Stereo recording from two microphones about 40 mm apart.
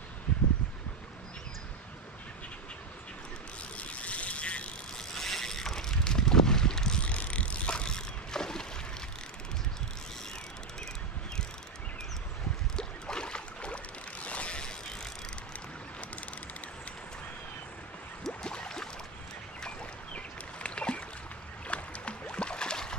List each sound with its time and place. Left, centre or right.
3.7 s vehicle: left
4.9 s a sound: centre
7.0 s vehicle: left; by 8.6 s centre
12.7 s boat: left
18.2 s a sound: left
20.2 s boat: left